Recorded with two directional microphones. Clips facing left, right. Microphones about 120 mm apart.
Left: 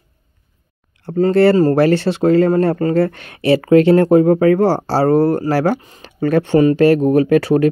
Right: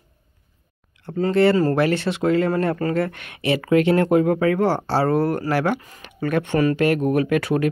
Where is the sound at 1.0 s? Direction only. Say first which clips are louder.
Left 5 dB; 35° left (ahead or behind).